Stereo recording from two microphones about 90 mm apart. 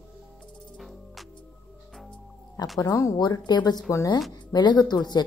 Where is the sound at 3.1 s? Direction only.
50° left (ahead or behind).